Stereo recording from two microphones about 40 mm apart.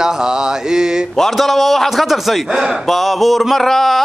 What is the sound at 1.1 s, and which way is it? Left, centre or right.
A man's voice, centre.